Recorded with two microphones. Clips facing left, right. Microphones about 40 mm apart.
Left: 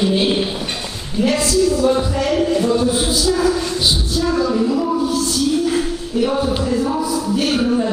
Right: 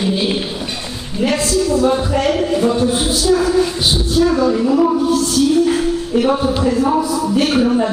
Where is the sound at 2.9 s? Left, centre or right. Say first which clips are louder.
Right 2 dB; right.